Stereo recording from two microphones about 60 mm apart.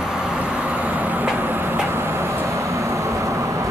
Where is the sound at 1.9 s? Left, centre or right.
Right.